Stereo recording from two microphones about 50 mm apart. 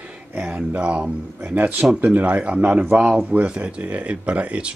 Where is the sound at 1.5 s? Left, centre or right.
Right.